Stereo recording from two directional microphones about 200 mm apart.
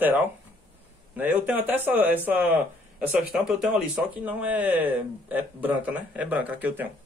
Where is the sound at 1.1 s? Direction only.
10° right (ahead or behind).